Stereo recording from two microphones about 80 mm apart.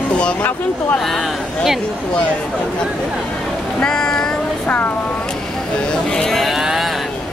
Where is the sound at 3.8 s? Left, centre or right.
Centre.